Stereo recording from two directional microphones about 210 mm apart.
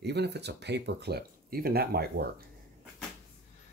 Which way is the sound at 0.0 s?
55° right (ahead or behind).